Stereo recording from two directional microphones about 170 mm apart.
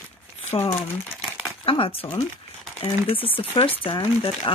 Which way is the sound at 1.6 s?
30° left (ahead or behind).